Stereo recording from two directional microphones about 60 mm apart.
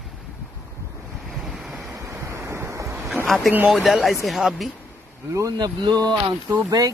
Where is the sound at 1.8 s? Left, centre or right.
Right.